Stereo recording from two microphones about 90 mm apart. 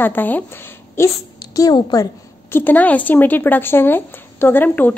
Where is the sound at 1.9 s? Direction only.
45° left (ahead or behind).